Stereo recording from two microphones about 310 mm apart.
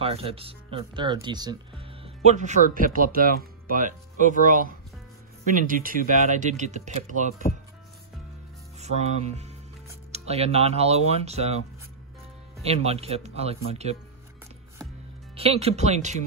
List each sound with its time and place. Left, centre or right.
0.0 s speech: centre
8.7 s music: right
10.1 s speech: centre
12.6 s speech: centre
15.3 s speech: centre